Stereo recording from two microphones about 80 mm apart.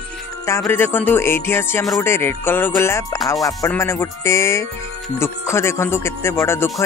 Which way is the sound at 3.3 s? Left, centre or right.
Left.